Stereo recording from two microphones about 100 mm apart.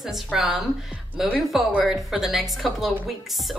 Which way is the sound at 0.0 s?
5° right (ahead or behind).